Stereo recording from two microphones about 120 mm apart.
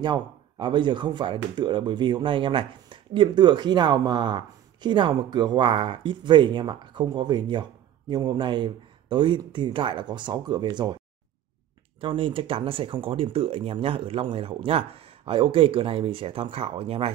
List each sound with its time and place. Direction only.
0.0 s speech: 40° right (ahead or behind)
12.0 s speech: 45° right (ahead or behind)